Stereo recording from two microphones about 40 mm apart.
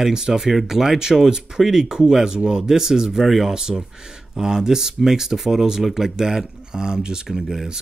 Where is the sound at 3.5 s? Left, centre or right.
Centre.